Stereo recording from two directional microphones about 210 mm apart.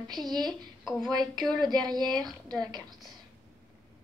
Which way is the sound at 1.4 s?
Centre (ahead or behind).